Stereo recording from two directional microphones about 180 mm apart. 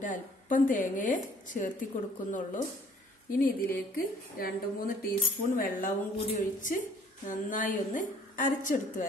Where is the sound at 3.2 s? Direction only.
50° left (ahead or behind).